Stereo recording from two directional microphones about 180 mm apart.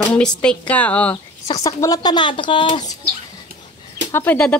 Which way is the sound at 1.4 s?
20° left (ahead or behind).